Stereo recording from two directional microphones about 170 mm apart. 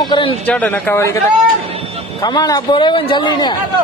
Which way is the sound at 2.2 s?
20° left (ahead or behind).